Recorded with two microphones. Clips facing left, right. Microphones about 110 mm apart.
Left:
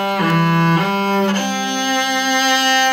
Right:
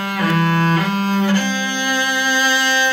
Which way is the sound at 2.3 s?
70° left (ahead or behind).